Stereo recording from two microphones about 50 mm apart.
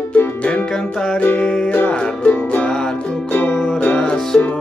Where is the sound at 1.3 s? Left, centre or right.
Centre; by 3.6 s left.